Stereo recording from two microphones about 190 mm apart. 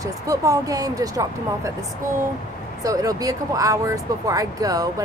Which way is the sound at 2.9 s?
20° right (ahead or behind).